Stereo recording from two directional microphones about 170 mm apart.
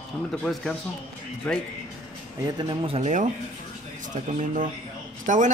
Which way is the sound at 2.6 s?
30° right (ahead or behind).